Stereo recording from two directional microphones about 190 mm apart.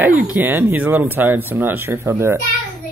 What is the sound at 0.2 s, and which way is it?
Speech, 10° right (ahead or behind).